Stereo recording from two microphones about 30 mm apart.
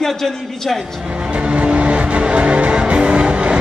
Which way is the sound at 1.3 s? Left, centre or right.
Right.